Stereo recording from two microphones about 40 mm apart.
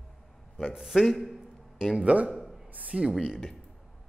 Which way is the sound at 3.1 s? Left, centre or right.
Centre.